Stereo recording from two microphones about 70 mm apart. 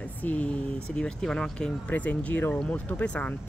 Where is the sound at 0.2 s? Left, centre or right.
Left.